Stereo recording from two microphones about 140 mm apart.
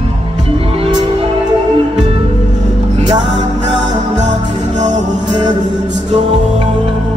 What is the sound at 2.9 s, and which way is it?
Music, 50° right (ahead or behind).